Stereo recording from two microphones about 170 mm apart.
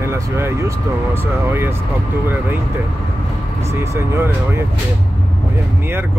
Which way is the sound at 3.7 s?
15° right (ahead or behind).